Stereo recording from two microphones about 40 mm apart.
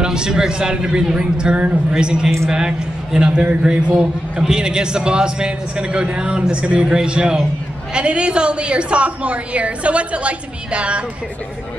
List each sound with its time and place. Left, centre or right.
0.0 s a woman's voice: right